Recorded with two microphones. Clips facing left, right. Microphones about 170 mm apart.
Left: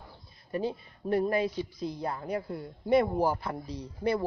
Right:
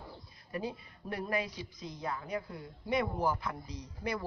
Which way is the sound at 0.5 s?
30° left (ahead or behind).